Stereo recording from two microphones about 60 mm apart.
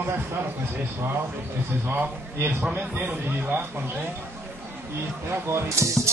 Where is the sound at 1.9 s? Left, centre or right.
Right.